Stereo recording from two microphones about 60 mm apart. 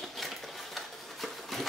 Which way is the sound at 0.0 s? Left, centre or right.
Centre.